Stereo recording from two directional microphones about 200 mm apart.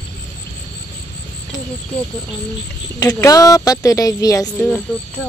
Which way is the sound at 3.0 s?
20° left (ahead or behind).